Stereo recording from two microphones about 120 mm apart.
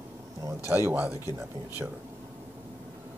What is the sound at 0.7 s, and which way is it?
Speech, 20° right (ahead or behind).